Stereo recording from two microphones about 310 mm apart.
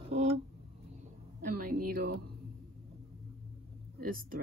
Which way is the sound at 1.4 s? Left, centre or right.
Right.